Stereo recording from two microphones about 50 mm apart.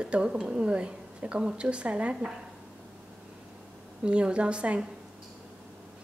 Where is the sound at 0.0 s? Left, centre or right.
Right.